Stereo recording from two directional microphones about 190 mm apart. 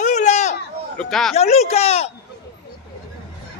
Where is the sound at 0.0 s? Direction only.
40° left (ahead or behind).